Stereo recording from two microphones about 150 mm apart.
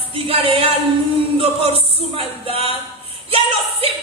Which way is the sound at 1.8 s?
40° right (ahead or behind).